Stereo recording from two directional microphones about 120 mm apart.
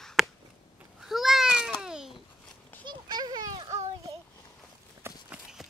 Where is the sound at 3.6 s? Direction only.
65° right (ahead or behind).